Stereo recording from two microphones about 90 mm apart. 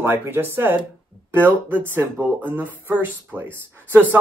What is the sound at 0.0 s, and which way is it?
A man's voice, 25° right (ahead or behind).